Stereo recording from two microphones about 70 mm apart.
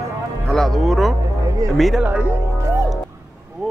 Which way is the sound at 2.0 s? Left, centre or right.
Right.